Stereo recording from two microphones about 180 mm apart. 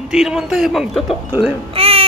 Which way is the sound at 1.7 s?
30° right (ahead or behind).